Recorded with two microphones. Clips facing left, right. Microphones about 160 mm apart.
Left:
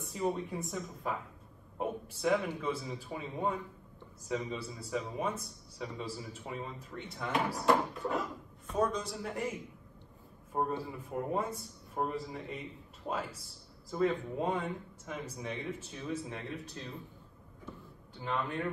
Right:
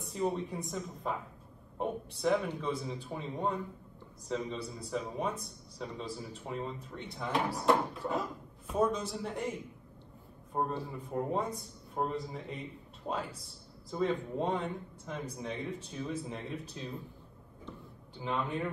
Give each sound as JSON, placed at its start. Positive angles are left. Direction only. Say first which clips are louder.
{"t": 0.0, "sound": "a man's voice", "louder": "right 1 dB", "side_deg": 0}
{"t": 10.5, "sound": "a man's voice", "louder": "even", "side_deg": 5}
{"t": 18.2, "sound": "a man's voice", "louder": "right 1 dB", "side_deg": 0}